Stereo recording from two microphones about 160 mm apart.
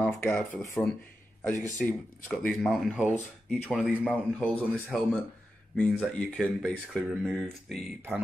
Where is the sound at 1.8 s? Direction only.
Centre (ahead or behind).